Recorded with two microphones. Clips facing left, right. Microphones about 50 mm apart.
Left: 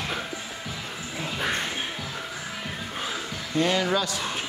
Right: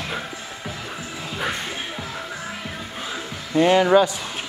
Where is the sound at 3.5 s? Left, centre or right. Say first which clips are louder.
Right 9 dB; right.